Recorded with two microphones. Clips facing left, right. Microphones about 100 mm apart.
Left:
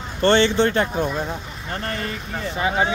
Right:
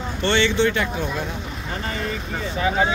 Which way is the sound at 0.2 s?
40° left (ahead or behind).